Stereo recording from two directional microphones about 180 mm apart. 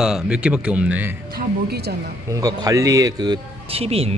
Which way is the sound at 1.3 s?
60° right (ahead or behind).